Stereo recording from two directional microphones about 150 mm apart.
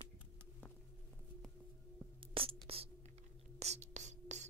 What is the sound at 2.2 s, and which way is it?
Whispering, 40° right (ahead or behind).